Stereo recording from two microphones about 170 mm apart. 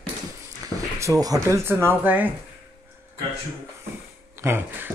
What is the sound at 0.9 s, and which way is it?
Speech, 20° right (ahead or behind).